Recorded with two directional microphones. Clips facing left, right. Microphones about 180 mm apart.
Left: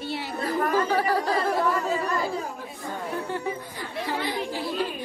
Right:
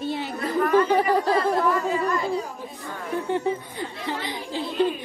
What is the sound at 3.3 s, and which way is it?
Speech, 20° right (ahead or behind).